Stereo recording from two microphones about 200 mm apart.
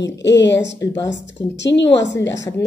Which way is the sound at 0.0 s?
60° left (ahead or behind).